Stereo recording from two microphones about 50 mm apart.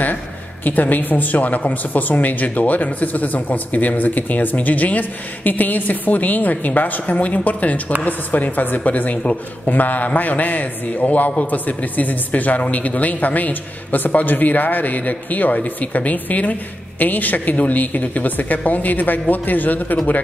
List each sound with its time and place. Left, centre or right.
0.7 s a woman's voice: left